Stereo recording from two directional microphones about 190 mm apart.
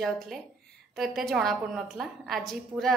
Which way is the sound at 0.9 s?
Centre (ahead or behind).